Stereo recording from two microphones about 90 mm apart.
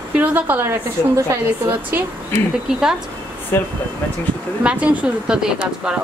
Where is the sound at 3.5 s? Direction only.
25° left (ahead or behind).